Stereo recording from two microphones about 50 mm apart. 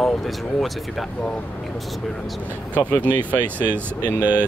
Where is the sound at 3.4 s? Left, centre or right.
Right.